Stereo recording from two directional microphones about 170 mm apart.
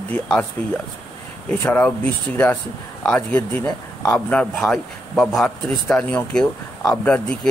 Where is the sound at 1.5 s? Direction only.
10° left (ahead or behind).